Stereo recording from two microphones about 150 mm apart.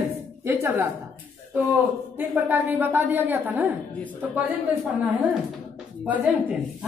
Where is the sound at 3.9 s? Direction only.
10° left (ahead or behind).